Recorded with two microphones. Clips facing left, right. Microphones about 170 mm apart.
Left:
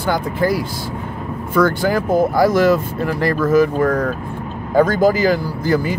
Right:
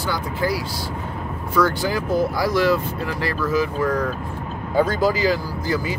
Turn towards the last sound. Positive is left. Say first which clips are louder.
# left 6 dB
turn(degrees=50)  # may be behind; listen again after turning